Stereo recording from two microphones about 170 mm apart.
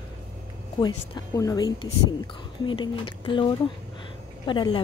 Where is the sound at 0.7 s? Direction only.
25° left (ahead or behind).